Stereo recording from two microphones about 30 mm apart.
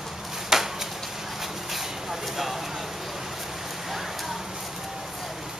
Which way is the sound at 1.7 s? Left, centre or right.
Centre.